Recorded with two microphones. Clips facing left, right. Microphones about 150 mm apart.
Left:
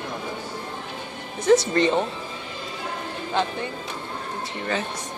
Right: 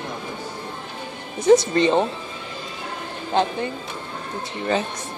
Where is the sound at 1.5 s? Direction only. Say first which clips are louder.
Right 3 dB; 15° right (ahead or behind).